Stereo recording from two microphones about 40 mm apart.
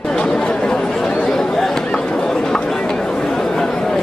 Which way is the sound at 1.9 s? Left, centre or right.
Left.